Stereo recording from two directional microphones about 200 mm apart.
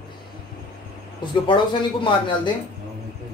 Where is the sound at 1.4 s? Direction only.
25° left (ahead or behind).